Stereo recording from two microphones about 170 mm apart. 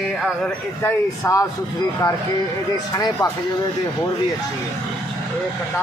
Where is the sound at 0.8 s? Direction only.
15° left (ahead or behind).